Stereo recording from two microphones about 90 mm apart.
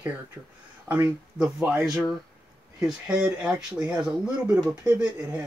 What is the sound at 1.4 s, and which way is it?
Speech, 10° right (ahead or behind).